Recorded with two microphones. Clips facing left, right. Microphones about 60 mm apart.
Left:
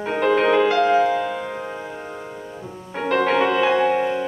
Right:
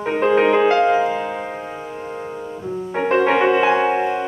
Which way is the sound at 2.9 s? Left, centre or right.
Right.